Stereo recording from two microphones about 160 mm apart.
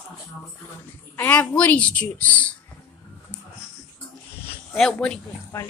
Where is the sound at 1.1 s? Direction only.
10° left (ahead or behind).